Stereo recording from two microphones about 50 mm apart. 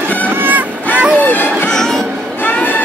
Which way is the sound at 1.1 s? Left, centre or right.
Left.